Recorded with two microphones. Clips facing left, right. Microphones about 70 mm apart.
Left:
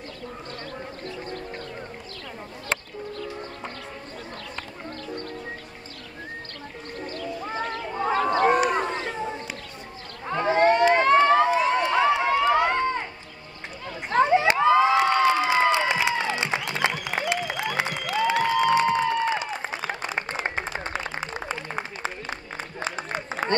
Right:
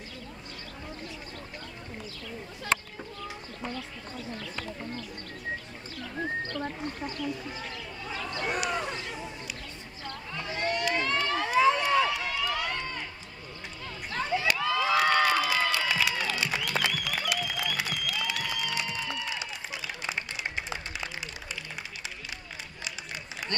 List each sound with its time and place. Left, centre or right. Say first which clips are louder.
7.8 s a sound: left 17 dB; left
10.3 s run: left 13 dB; left
14.2 s cheering: left 9 dB; left